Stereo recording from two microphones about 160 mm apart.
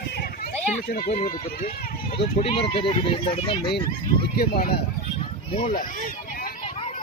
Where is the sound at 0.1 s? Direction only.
75° left (ahead or behind).